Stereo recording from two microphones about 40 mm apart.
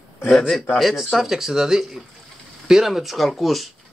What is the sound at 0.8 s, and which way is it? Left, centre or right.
Speech, centre.